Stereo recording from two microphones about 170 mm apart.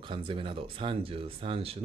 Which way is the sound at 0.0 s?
30° right (ahead or behind).